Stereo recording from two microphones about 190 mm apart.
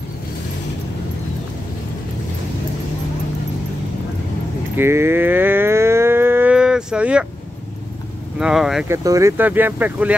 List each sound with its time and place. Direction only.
4.7 s cattle: 15° right (ahead or behind)
8.4 s speech: 5° right (ahead or behind)
8.8 s speech: 15° right (ahead or behind)